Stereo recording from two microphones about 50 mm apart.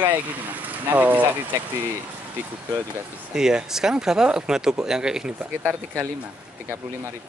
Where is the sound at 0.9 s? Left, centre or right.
Right.